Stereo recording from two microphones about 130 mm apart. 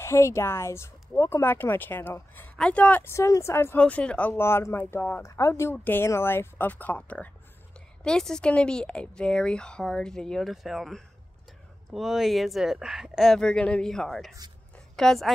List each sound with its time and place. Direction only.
0.0 s speech: 20° left (ahead or behind)
3.8 s speech: 10° left (ahead or behind)